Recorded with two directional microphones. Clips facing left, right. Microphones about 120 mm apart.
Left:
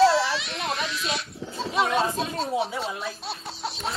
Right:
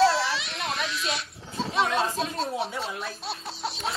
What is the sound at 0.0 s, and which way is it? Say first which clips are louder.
Speech: left 3 dB; centre (ahead or behind).